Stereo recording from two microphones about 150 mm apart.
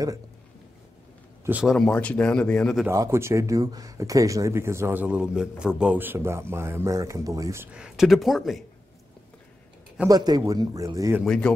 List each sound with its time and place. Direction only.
1.4 s speech: 10° right (ahead or behind)
1.7 s a man's voice: 5° left (ahead or behind)
2.9 s speech: 20° right (ahead or behind)
7.7 s speech: 5° right (ahead or behind)
10.0 s a man's voice: 25° right (ahead or behind)
11.2 s speech: 5° left (ahead or behind)